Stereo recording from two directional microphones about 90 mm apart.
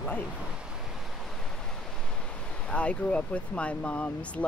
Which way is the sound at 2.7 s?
15° left (ahead or behind).